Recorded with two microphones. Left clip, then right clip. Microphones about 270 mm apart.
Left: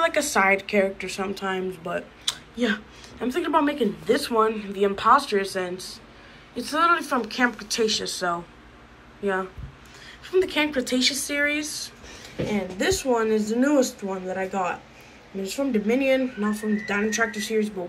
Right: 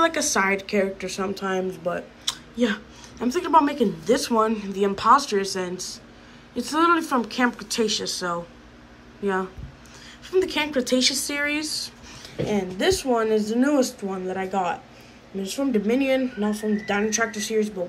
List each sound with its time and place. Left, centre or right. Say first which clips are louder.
0.0 s speech: even; centre